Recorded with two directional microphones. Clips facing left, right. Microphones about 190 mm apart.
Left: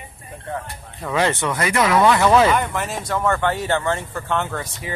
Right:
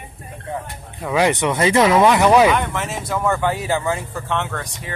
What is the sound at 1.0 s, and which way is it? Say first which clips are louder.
Speech: right 3 dB; 15° right (ahead or behind).